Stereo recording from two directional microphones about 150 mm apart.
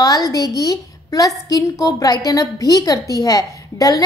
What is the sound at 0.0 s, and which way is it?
A woman's voice, 25° left (ahead or behind).